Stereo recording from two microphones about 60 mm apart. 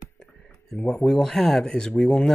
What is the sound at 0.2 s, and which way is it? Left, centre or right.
Speech, centre.